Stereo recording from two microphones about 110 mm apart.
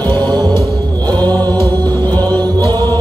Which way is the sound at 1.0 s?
35° right (ahead or behind).